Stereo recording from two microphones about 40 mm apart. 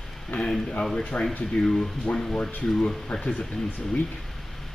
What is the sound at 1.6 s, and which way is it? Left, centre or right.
Speech, left.